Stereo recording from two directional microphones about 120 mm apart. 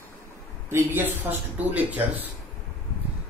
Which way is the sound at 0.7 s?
15° right (ahead or behind).